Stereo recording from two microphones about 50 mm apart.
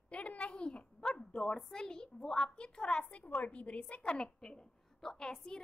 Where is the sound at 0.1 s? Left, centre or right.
Left.